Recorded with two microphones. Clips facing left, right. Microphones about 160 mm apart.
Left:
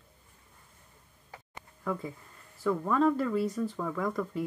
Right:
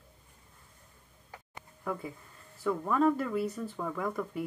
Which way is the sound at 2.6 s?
5° right (ahead or behind).